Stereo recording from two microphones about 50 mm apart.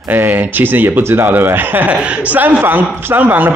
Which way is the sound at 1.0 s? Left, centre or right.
Right.